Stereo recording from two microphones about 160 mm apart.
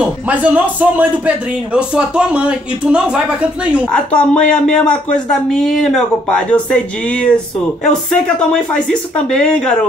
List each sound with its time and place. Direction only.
0.0 s speech: 10° right (ahead or behind)
3.9 s speech: 5° left (ahead or behind)